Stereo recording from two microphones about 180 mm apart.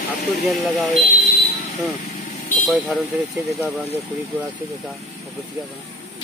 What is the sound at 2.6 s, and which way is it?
Speech, centre (ahead or behind).